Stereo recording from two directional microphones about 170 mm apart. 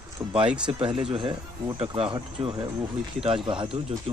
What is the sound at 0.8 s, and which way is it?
Speech, 30° right (ahead or behind).